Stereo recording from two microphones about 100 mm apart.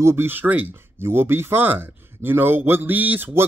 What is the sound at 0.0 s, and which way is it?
Speech, 25° right (ahead or behind).